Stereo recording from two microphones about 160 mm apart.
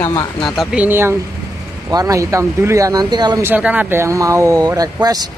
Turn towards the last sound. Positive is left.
turn(degrees=-25)  # may be behind; listen again after turning